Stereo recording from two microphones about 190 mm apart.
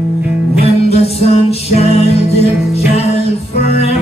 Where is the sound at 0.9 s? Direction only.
30° left (ahead or behind).